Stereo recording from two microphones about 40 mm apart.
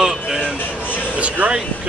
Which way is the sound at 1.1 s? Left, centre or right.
Right.